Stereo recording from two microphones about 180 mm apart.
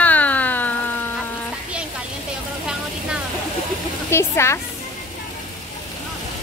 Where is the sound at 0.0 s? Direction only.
10° left (ahead or behind).